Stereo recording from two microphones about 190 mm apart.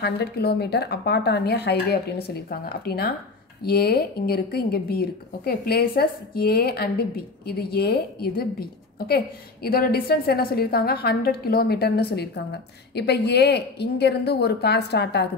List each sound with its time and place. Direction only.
0.0 s a woman's voice: 60° left (ahead or behind)